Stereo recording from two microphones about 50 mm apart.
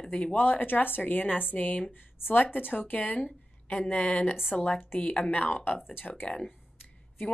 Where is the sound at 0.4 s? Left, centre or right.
Left.